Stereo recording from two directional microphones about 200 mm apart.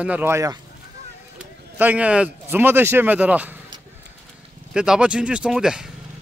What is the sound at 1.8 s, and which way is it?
Speech, 5° right (ahead or behind).